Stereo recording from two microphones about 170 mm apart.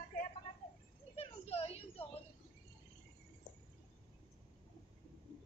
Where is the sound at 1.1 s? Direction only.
35° left (ahead or behind).